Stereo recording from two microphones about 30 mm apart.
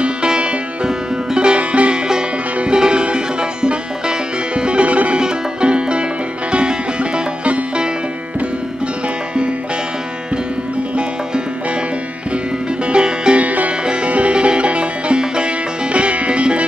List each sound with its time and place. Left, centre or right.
0.8 s music: right
1.5 s music: right
5.1 s music: right
11.0 s horse: right
12.8 s music: right
13.4 s music: right
13.8 s music: right
15.9 s music: right